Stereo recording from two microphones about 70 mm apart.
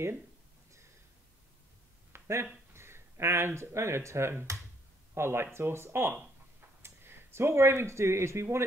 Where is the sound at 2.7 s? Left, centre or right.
Right.